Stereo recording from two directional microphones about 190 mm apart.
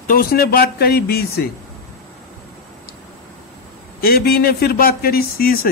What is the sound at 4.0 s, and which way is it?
A man's voice, 55° left (ahead or behind).